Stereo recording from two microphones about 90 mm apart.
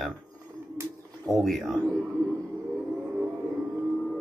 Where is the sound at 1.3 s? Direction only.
Centre (ahead or behind).